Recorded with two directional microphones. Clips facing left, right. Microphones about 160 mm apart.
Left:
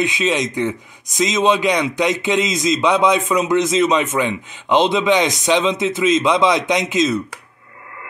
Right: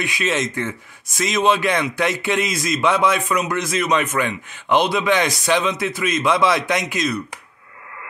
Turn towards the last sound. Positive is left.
turn(degrees=20)  # may be behind; listen again after turning